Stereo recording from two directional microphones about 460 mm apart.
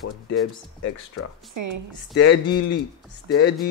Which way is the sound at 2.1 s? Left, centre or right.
Left.